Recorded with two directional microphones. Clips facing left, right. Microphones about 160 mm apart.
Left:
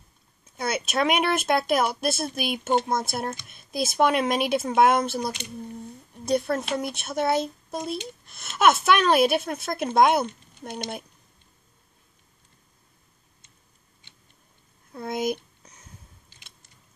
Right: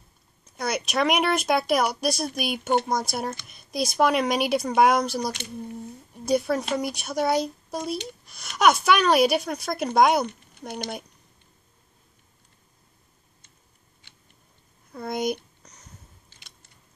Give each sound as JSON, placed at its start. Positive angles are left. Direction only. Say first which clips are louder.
{"t": 0.6, "sound": "speech", "louder": "even", "side_deg": 5}
{"t": 14.9, "sound": "a child's voice", "louder": "even", "side_deg": 5}
{"t": 15.6, "sound": "a sound", "louder": "even", "side_deg": 5}